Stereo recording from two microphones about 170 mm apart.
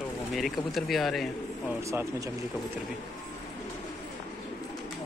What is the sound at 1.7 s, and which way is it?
Speech, 15° right (ahead or behind).